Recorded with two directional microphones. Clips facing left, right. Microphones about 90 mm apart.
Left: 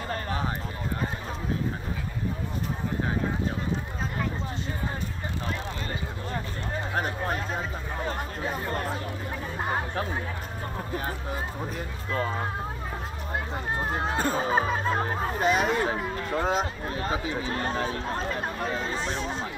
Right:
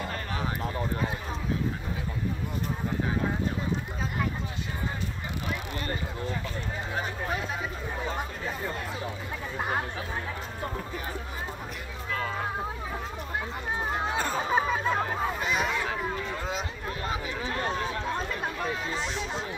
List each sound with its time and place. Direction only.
0.1 s a sound: 35° left (ahead or behind)
7.0 s a sound: 45° left (ahead or behind)
8.5 s chatter: 45° left (ahead or behind)
13.7 s music: centre (ahead or behind)
15.0 s hubbub: 35° left (ahead or behind)
15.9 s chatter: 40° left (ahead or behind)